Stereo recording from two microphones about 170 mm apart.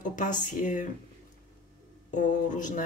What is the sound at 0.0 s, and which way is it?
Speech, 50° left (ahead or behind).